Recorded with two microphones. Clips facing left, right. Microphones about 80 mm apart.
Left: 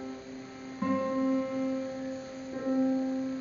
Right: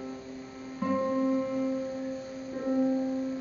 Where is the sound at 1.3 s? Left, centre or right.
Centre.